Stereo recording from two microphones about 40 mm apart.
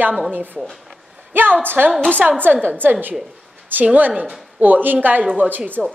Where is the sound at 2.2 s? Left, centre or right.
Right.